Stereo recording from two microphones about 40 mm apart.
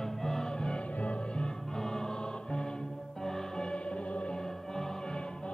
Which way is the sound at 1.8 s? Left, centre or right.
Centre.